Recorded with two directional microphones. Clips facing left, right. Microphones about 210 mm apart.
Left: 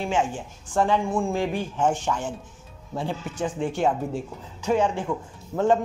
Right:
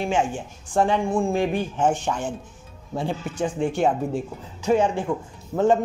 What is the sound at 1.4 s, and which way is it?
Speech, 20° right (ahead or behind).